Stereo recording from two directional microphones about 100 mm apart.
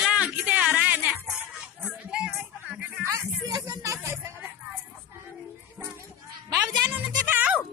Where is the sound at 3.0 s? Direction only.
40° right (ahead or behind).